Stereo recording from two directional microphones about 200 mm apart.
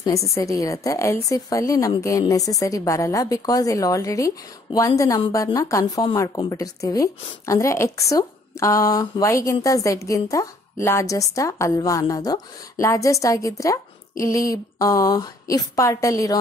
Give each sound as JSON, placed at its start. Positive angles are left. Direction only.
{"t": 0.0, "sound": "a woman's voice", "side_deg": 15}